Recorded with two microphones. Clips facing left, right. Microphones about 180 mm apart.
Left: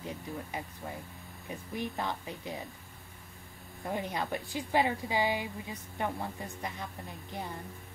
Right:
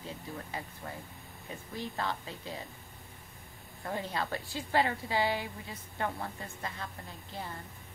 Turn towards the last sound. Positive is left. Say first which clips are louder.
# left 2 dB
turn(degrees=15)  # may be behind; listen again after turning